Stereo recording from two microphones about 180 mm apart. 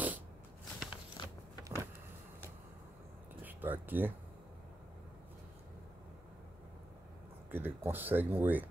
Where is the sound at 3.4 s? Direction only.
10° right (ahead or behind).